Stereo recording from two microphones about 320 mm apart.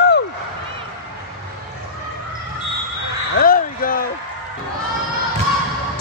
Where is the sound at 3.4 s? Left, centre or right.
Left.